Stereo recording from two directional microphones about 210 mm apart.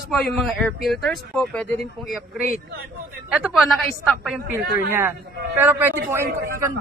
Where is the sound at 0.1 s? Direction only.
Centre (ahead or behind).